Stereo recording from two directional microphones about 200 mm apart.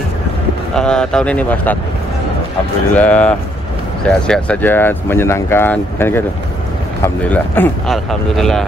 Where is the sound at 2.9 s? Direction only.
5° left (ahead or behind).